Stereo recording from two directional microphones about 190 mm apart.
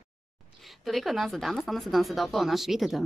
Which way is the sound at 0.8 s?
Centre (ahead or behind).